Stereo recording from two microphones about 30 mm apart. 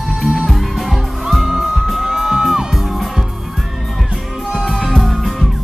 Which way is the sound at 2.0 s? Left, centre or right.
Centre.